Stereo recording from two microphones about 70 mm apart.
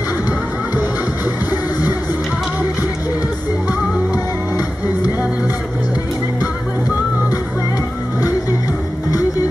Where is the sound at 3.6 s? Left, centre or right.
Left.